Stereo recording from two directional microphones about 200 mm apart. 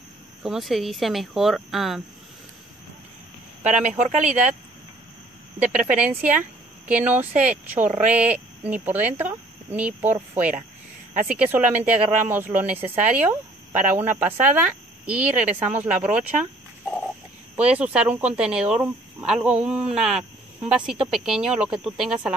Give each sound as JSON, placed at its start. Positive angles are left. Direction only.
{"t": 0.4, "sound": "speech", "side_deg": 0}
{"t": 3.6, "sound": "speech", "side_deg": -35}
{"t": 5.6, "sound": "speech", "side_deg": -5}
{"t": 17.6, "sound": "speech", "side_deg": -5}